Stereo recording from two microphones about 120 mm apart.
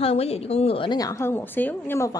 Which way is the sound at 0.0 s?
60° left (ahead or behind).